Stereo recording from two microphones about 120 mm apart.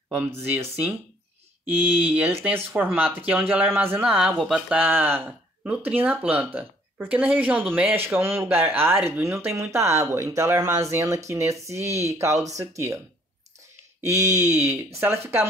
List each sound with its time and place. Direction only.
0.1 s speech: 20° right (ahead or behind)
2.0 s speech: 15° right (ahead or behind)
11.8 s speech: 65° right (ahead or behind)
12.1 s speech: 25° right (ahead or behind)
14.0 s speech: 25° right (ahead or behind)